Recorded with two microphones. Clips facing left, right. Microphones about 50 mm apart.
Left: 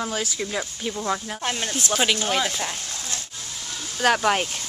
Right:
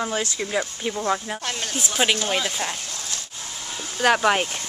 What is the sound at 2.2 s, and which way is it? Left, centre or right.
Speech, centre.